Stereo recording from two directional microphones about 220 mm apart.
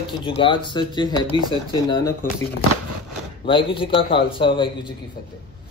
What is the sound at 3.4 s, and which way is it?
A man's voice, 20° left (ahead or behind).